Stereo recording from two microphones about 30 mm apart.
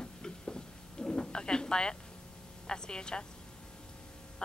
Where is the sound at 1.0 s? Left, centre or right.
Left.